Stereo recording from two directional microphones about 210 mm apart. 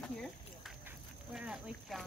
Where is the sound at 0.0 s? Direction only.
5° left (ahead or behind).